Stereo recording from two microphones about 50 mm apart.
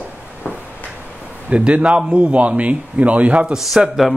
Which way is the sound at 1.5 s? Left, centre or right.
Right.